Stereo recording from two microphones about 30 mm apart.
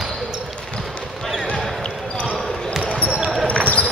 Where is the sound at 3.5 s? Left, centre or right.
Left.